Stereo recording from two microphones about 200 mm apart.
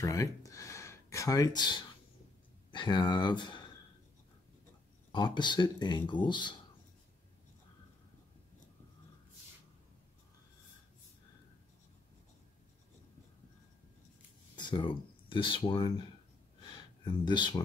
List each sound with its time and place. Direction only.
0.0 s speech: 15° left (ahead or behind)
5.1 s speech: 20° left (ahead or behind)
14.5 s speech: 25° left (ahead or behind)
16.6 s a sound: 20° left (ahead or behind)